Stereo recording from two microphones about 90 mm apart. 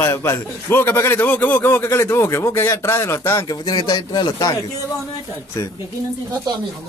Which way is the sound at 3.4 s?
45° left (ahead or behind).